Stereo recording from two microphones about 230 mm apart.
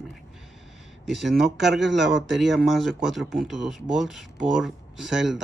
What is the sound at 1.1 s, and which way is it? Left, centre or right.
Speech, centre.